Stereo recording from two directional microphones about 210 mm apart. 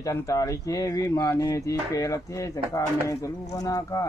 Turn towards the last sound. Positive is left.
turn(degrees=15)  # may be behind; listen again after turning